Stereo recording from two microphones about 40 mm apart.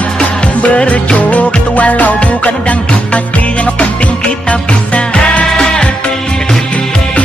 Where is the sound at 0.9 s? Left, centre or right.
Left.